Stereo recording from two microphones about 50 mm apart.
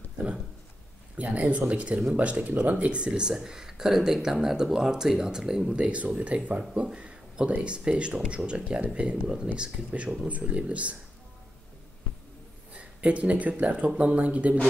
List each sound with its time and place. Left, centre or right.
1.1 s speech: right; by 5.7 s centre
5.7 s speech: right
12.7 s speech: right